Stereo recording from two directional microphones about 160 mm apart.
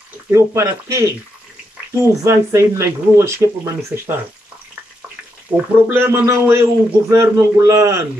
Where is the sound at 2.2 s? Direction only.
20° right (ahead or behind).